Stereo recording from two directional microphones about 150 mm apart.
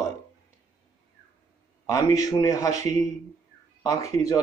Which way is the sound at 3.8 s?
20° left (ahead or behind).